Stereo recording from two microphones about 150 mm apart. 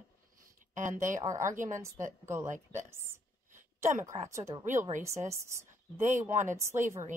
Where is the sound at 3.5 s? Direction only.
55° right (ahead or behind).